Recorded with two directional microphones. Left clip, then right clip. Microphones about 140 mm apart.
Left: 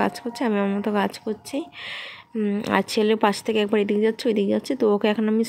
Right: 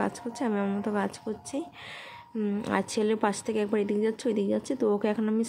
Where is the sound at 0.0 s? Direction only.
25° left (ahead or behind).